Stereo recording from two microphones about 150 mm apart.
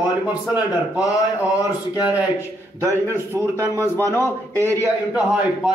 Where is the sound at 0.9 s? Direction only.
25° left (ahead or behind).